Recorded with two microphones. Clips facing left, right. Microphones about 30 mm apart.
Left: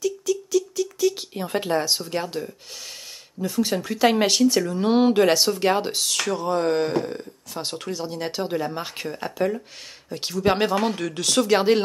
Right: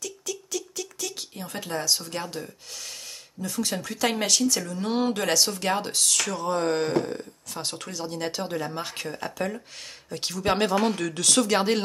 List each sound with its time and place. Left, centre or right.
0.0 s a sound: centre
1.4 s speech: left
1.8 s speech: left
6.4 s speech: centre